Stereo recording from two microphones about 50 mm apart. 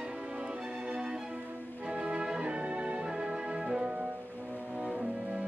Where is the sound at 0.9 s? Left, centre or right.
Centre.